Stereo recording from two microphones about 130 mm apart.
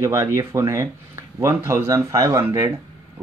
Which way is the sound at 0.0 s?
20° right (ahead or behind).